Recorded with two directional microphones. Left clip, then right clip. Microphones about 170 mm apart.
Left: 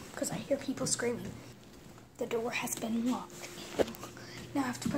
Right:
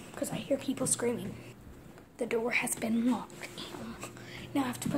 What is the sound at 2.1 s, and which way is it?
A woman's voice, 20° right (ahead or behind).